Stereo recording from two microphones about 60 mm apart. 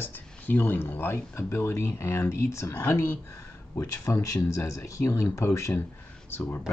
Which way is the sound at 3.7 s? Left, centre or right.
Left.